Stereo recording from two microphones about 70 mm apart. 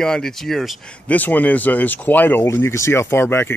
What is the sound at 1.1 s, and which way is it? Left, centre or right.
Speech, left.